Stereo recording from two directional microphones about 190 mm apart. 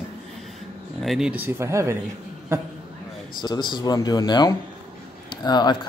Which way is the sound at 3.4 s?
20° left (ahead or behind).